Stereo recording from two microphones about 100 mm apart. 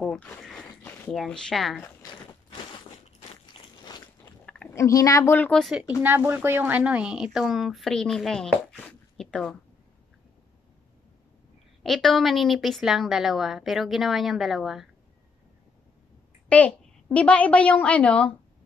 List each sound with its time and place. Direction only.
0.4 s a sound: 5° left (ahead or behind)
1.1 s a woman's voice: 5° left (ahead or behind)
4.6 s speech: 30° left (ahead or behind)
5.5 s a woman's voice: centre (ahead or behind)
5.8 s speech: 15° right (ahead or behind); by 8.5 s 5° left (ahead or behind)
8.7 s zipper: 10° left (ahead or behind)
11.8 s a woman's voice: 5° left (ahead or behind)
16.4 s a child's voice: 15° left (ahead or behind)